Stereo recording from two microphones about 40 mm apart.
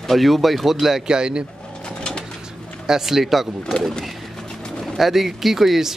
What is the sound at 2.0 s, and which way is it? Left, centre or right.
Bird, left.